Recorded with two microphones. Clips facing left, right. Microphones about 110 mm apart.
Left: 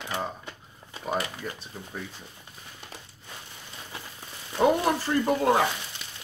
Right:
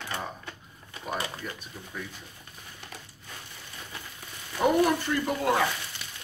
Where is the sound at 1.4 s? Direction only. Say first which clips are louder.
Left 2 dB; 30° left (ahead or behind).